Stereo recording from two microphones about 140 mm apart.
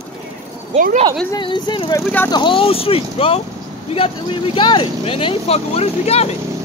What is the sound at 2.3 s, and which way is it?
Speech, 35° left (ahead or behind).